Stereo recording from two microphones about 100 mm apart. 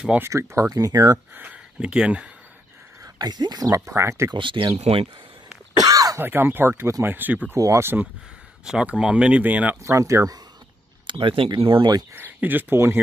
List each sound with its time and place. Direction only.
0.2 s speech: 30° right (ahead or behind)
1.1 s speech: 15° right (ahead or behind)
3.2 s speech: 45° right (ahead or behind)
4.3 s speech: 55° right (ahead or behind)
4.7 s speech: 90° right
5.8 s cough: 35° right (ahead or behind)
6.2 s speech: 20° right (ahead or behind)
7.5 s speech: 35° right (ahead or behind)
8.6 s speech: 10° right (ahead or behind)
9.8 s speech: 30° right (ahead or behind)
11.1 s speech: 60° right (ahead or behind)
12.1 s speech: 20° right (ahead or behind)